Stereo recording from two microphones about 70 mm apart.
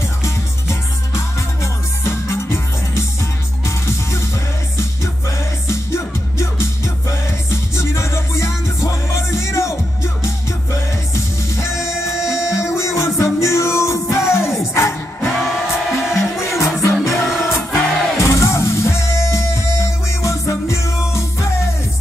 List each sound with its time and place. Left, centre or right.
0.2 s music: left
5.7 s music: left
11.1 s music: left
15.2 s music: centre
16.2 s music: left
17.1 s music: centre
17.7 s music: left